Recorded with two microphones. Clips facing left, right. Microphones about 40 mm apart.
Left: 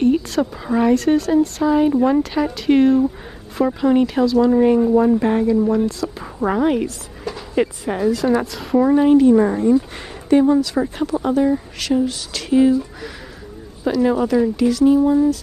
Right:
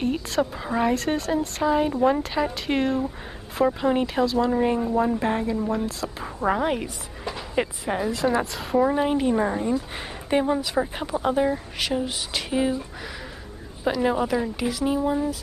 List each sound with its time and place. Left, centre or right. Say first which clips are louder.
0.0 s speech: left 7 dB; centre
10.3 s speech: left 8 dB; centre
13.8 s speech: left 5 dB; centre